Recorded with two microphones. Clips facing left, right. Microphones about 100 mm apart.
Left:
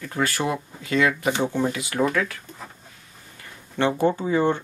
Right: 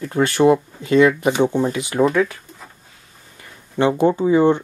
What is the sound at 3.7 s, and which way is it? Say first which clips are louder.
Speech: right 5 dB; 15° right (ahead or behind).